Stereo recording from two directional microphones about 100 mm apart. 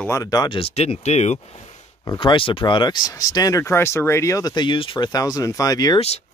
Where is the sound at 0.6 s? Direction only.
80° left.